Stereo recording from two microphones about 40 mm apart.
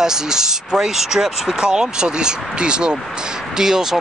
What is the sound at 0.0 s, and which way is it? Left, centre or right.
Speech, centre.